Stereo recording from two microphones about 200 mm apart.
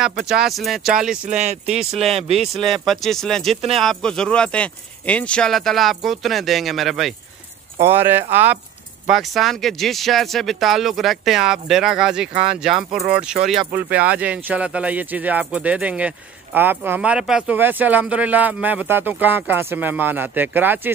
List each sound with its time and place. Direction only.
0.0 s speech: 5° right (ahead or behind)
1.3 s speech: 35° right (ahead or behind)
2.3 s speech: centre (ahead or behind)